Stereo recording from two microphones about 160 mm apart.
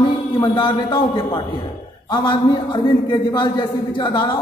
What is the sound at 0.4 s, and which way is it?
A man's voice, 30° left (ahead or behind).